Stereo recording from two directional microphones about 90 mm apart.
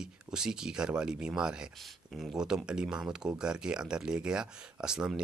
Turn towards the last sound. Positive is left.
turn(degrees=-10)  # may be behind; listen again after turning